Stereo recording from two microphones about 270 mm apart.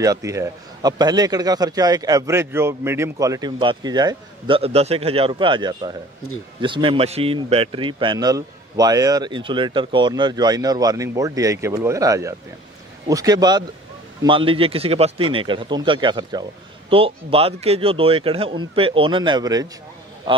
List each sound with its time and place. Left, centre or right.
0.0 s a man's voice: centre